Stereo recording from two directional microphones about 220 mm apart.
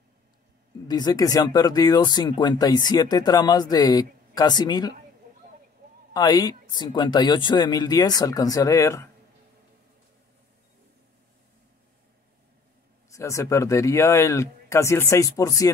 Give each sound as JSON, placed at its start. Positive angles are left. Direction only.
{"t": 0.8, "sound": "speech", "side_deg": 20}
{"t": 6.1, "sound": "speech", "side_deg": 20}
{"t": 13.1, "sound": "speech", "side_deg": 15}